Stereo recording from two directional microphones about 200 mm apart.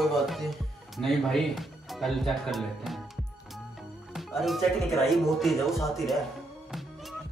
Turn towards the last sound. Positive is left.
turn(degrees=0)  # may be behind; listen again after turning